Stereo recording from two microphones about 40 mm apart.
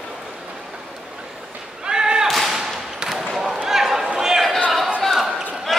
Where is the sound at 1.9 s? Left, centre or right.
Centre.